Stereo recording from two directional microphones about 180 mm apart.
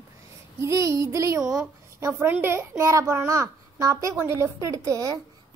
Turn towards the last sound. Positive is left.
turn(degrees=-20)  # may be behind; listen again after turning